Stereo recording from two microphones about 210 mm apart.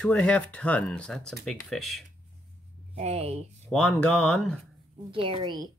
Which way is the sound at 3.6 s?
5° left (ahead or behind).